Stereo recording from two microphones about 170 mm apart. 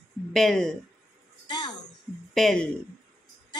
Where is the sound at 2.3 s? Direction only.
Centre (ahead or behind).